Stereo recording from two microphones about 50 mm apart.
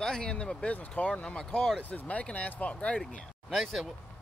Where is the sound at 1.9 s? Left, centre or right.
Left.